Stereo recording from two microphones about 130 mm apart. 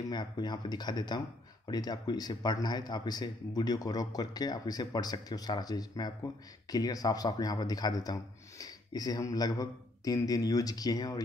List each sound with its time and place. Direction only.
0.1 s speech: 35° left (ahead or behind)